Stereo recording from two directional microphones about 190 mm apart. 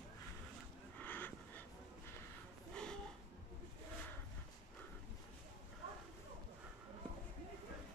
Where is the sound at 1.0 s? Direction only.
10° left (ahead or behind).